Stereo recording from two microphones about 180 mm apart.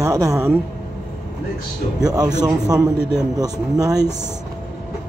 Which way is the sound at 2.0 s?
20° right (ahead or behind).